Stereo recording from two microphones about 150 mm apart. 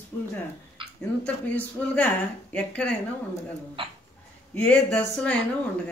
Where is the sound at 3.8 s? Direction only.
40° right (ahead or behind).